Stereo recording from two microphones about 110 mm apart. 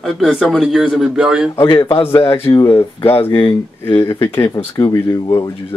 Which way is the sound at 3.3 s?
45° left (ahead or behind).